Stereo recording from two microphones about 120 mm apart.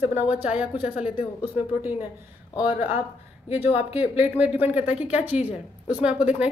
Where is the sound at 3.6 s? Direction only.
60° left (ahead or behind).